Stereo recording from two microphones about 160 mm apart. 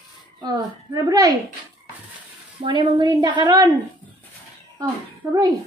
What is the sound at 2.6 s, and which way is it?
A woman's voice, 30° right (ahead or behind).